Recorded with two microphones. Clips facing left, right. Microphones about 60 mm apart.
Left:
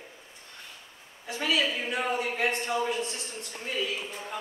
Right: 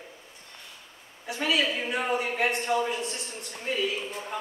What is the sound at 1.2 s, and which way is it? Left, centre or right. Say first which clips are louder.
A woman's voice: right 1 dB; centre.